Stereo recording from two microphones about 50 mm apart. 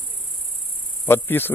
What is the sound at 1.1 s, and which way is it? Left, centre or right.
Speech, left.